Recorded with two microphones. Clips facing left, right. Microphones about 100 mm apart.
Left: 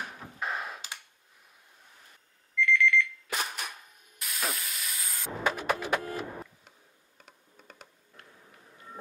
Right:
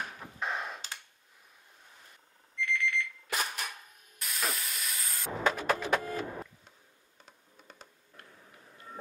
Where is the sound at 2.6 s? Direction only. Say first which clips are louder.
Left 7 dB; 35° right (ahead or behind).